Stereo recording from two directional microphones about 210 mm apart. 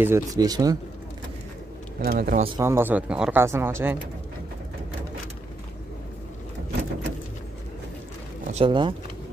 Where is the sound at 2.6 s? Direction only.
10° right (ahead or behind).